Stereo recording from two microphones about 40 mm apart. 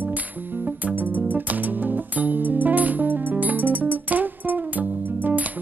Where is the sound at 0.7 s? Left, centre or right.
Right.